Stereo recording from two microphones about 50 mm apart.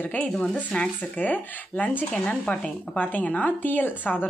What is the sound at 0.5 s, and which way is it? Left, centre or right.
Speech, left.